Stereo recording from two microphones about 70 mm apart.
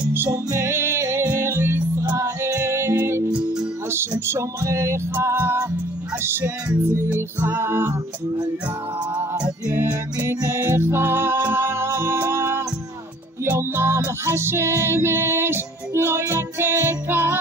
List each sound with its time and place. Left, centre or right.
0.3 s music: right
4.3 s music: right
9.8 s music: right